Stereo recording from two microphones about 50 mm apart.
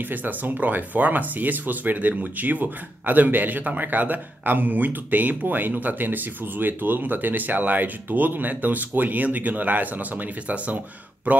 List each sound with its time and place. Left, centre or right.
0.0 s speech: right